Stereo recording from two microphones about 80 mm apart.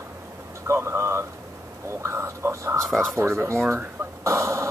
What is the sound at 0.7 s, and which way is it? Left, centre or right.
Speech, right.